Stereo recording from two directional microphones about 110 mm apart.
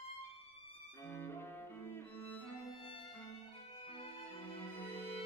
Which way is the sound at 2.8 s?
55° left (ahead or behind).